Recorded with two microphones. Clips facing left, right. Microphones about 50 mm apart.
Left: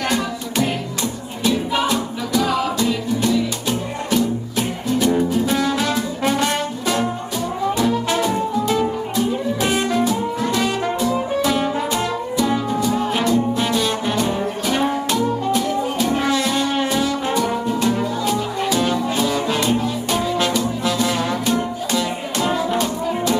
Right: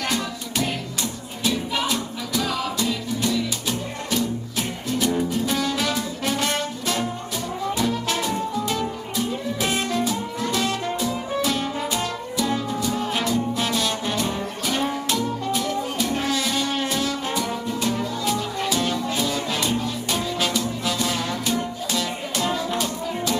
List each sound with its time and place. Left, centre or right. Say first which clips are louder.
1.7 s music: left 5 dB; centre
13.1 s music: left 5 dB; centre